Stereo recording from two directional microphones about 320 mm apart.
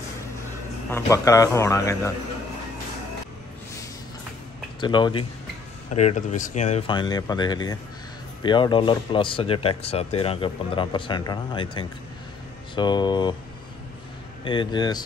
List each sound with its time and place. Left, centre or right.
0.8 s speech: centre
4.7 s speech: centre
14.4 s speech: centre